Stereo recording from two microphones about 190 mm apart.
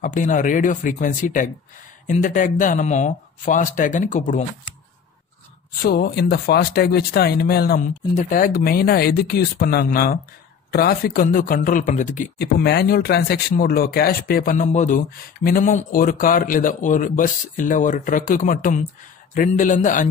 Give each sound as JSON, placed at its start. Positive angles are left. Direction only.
{"t": 0.0, "sound": "speech", "side_deg": 45}
{"t": 5.8, "sound": "speech", "side_deg": 55}
{"t": 8.1, "sound": "speech", "side_deg": 40}
{"t": 12.4, "sound": "speech", "side_deg": 55}